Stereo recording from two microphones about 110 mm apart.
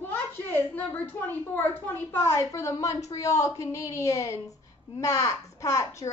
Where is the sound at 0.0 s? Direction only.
15° left (ahead or behind).